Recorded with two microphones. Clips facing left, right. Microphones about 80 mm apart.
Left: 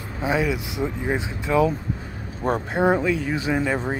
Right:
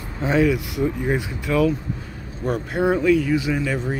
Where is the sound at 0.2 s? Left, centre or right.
Centre.